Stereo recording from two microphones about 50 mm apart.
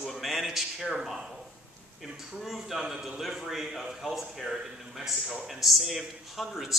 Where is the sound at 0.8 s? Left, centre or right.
Centre.